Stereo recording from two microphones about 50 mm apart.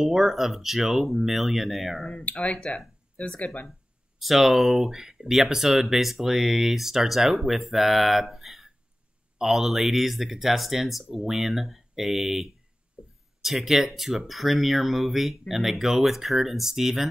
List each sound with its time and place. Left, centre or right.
0.0 s speech: centre
2.4 s speech: centre
4.2 s speech: centre
13.0 s a sound: centre
13.4 s speech: centre